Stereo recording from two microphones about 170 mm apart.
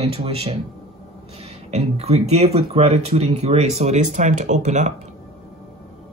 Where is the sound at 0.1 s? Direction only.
35° right (ahead or behind).